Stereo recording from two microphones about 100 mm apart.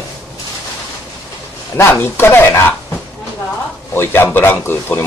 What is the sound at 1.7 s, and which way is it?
Speech, 25° left (ahead or behind).